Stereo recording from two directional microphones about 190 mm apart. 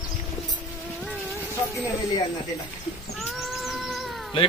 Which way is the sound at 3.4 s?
Centre (ahead or behind).